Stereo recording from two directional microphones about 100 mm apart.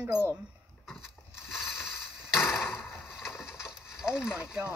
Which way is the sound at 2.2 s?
5° right (ahead or behind).